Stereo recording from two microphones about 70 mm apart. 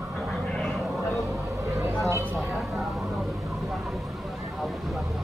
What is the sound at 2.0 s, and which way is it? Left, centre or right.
Speech, right.